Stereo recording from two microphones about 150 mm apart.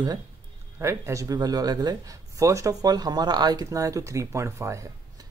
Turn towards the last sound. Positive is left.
turn(degrees=-20)  # may be behind; listen again after turning